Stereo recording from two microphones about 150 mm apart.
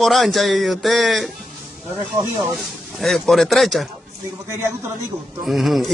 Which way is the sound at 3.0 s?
Centre (ahead or behind).